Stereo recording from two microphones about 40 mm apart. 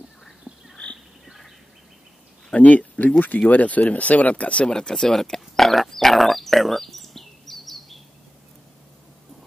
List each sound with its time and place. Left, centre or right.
1.2 s a sound: centre
2.5 s speech: left
4.6 s speech: centre
5.4 s pig: centre